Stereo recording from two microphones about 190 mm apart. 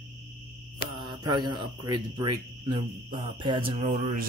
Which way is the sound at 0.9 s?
25° right (ahead or behind).